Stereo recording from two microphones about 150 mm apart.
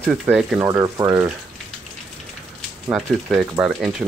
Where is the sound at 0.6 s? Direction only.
20° right (ahead or behind).